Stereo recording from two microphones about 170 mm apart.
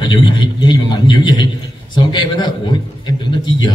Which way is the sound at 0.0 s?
25° left (ahead or behind).